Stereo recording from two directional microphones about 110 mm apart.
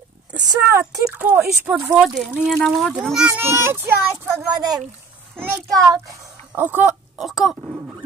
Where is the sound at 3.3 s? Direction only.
20° right (ahead or behind).